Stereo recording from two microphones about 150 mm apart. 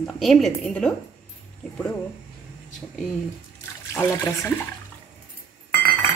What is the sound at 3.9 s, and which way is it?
Speech, 15° left (ahead or behind).